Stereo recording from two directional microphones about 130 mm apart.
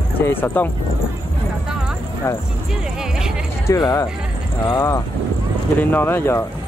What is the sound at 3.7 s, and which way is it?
Speech, 25° left (ahead or behind).